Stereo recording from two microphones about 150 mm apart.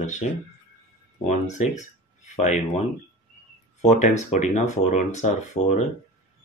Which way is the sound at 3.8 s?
50° left (ahead or behind).